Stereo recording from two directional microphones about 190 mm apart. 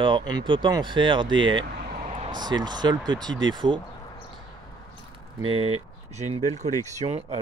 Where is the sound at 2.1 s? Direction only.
35° right (ahead or behind).